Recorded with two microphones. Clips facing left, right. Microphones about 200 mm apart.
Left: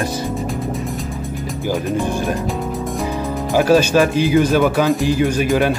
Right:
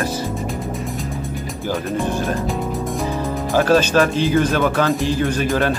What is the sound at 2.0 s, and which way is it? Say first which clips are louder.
Speech: left 1 dB; 15° left (ahead or behind).